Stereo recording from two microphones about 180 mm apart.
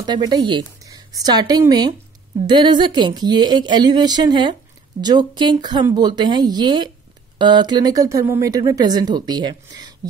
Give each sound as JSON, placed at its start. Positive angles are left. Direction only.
{"t": 0.0, "sound": "speech", "side_deg": -25}